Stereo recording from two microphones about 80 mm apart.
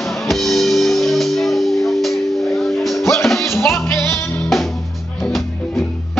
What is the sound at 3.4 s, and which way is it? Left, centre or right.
Music, left.